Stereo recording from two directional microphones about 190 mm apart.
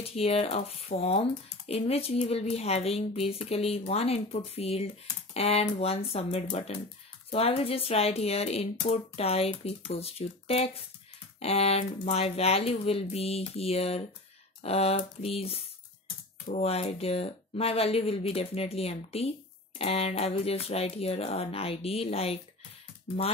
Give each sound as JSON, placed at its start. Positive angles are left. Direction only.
{"t": 0.0, "sound": "speech", "side_deg": 30}